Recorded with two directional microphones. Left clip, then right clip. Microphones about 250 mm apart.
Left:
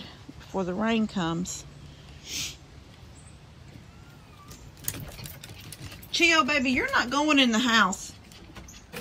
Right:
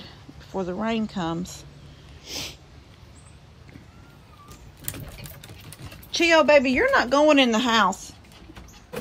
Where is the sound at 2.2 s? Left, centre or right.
Centre.